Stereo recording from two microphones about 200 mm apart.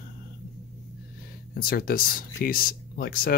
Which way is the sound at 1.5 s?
50° left (ahead or behind).